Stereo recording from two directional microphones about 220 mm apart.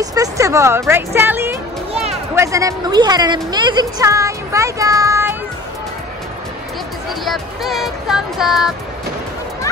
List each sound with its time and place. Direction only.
0.0 s music: 15° right (ahead or behind)
7.2 s speech: centre (ahead or behind)